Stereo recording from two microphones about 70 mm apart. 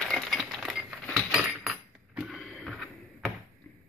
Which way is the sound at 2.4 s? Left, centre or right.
Centre.